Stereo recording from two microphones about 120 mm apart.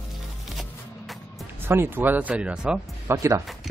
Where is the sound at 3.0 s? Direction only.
25° right (ahead or behind).